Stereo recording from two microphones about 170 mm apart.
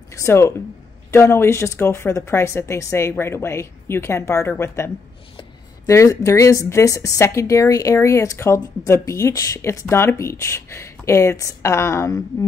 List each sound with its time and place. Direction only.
0.1 s speech: 15° left (ahead or behind)